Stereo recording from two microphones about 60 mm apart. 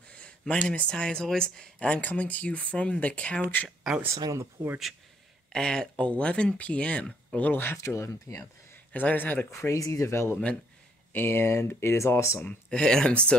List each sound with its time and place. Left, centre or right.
0.1 s speech: centre
4.1 s speech: right
5.5 s speech: centre
7.6 s speech: left
8.9 s speech: left
9.5 s speech: left
12.4 s speech: centre